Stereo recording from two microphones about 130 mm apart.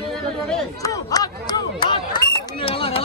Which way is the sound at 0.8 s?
30° left (ahead or behind).